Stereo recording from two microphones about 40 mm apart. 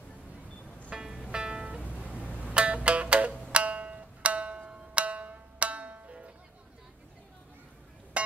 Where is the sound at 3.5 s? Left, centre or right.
Right.